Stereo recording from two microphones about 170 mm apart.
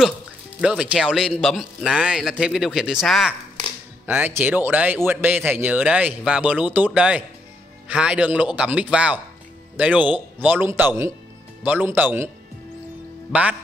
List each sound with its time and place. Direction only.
0.6 s a man's voice: 5° right (ahead or behind)
13.3 s speech: 5° right (ahead or behind)